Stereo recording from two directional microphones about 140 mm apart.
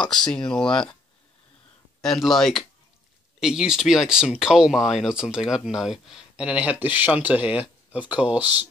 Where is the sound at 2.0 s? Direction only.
Centre (ahead or behind).